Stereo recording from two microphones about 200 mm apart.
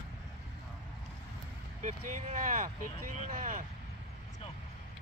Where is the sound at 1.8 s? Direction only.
40° right (ahead or behind).